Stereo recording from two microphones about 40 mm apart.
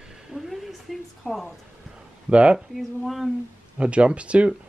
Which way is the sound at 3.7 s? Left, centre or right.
Right.